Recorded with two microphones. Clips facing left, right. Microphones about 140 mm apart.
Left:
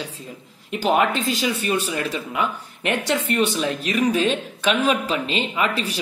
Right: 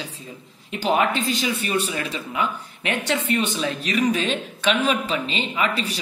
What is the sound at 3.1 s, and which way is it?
Speech, centre (ahead or behind).